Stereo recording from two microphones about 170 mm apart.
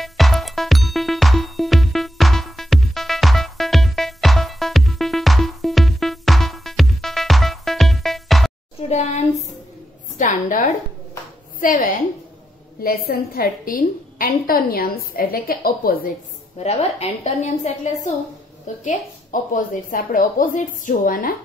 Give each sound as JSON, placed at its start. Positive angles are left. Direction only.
{"t": 0.0, "sound": "music", "side_deg": 0}
{"t": 8.8, "sound": "a sound", "side_deg": 40}
{"t": 11.6, "sound": "a woman's voice", "side_deg": 50}
{"t": 12.8, "sound": "a woman's voice", "side_deg": 60}
{"t": 16.5, "sound": "a woman's voice", "side_deg": 40}